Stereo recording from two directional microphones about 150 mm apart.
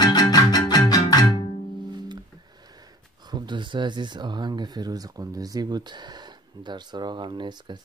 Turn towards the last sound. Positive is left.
turn(degrees=-30)  # may be behind; listen again after turning